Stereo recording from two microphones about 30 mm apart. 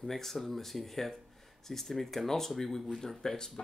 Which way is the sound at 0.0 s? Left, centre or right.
Centre.